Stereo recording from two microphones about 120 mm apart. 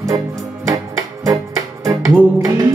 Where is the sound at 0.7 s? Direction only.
30° right (ahead or behind).